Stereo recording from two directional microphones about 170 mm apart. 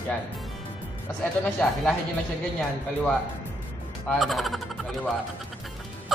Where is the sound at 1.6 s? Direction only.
5° left (ahead or behind).